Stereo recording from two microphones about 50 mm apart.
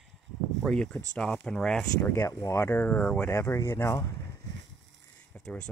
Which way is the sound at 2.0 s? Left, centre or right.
Left.